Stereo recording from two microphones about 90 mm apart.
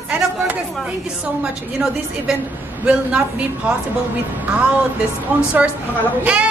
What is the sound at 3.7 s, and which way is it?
Speech, 15° right (ahead or behind).